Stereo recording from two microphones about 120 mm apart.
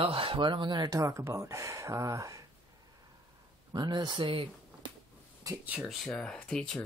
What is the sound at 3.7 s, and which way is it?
Speech, 35° right (ahead or behind).